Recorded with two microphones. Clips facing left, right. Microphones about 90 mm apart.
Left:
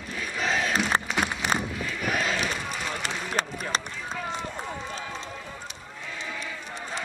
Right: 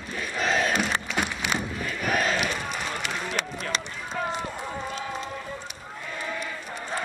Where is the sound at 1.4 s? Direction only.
40° left (ahead or behind).